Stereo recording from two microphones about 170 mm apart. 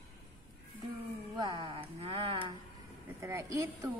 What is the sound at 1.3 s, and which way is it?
Speech, 30° right (ahead or behind).